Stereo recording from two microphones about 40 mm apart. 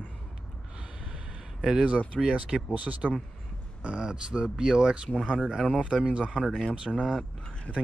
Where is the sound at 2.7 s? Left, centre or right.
Right.